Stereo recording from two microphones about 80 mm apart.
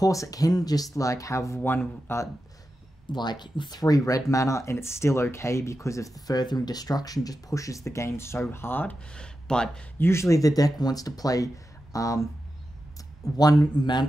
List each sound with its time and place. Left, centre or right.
0.0 s speech: left
1.6 s speech: left
3.1 s speech: left
9.1 s speech: centre
9.9 s speech: left